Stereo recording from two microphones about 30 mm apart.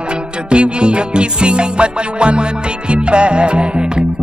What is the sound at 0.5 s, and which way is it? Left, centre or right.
Music, right.